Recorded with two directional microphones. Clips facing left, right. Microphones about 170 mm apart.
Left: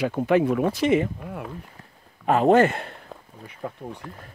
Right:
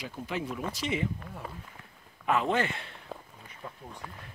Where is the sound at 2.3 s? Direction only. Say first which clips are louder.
Left 10 dB; 45° left (ahead or behind).